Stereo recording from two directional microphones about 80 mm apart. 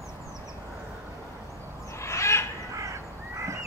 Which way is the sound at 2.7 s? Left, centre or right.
Right.